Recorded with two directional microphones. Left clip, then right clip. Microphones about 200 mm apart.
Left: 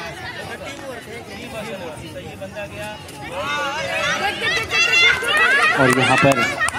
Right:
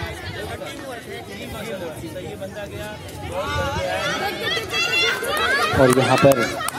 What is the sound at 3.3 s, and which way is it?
Speech, 55° right (ahead or behind).